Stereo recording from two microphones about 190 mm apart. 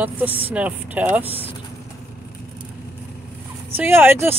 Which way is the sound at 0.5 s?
10° right (ahead or behind).